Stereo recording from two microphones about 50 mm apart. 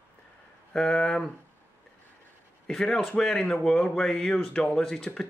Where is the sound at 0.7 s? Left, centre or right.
Centre.